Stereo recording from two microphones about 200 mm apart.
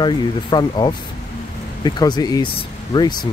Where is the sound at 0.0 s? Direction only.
20° left (ahead or behind).